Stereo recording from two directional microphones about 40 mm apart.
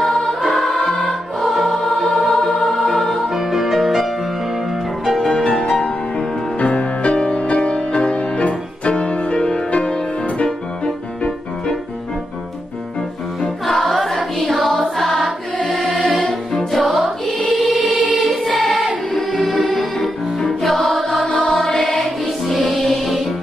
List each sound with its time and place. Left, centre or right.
0.0 s music: centre
1.4 s music: centre
3.3 s music: centre
5.6 s music: centre
6.6 s music: left
13.4 s music: centre
17.5 s choir: centre
17.8 s choir: right
18.2 s choir: centre
18.6 s music: centre